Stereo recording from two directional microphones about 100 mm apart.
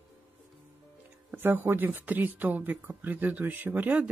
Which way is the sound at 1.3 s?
20° right (ahead or behind).